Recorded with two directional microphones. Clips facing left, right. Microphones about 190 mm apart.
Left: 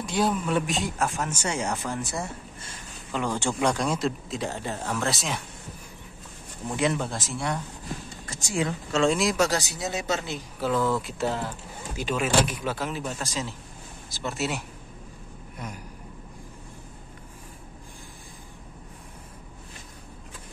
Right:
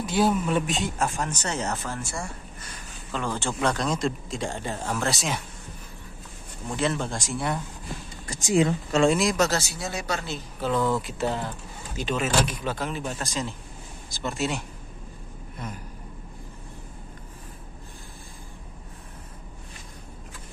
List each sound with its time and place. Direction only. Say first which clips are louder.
0.0 s speech: right 2 dB; 5° right (ahead or behind)
6.7 s speech: left 1 dB; 15° left (ahead or behind)
7.1 s speech: right 1 dB; centre (ahead or behind)
8.3 s speech: right 6 dB; 15° right (ahead or behind)
9.0 s speech: right 1 dB; centre (ahead or behind)
9.5 s speech: left 1 dB; 20° left (ahead or behind)
10.7 s speech: right 1 dB; centre (ahead or behind)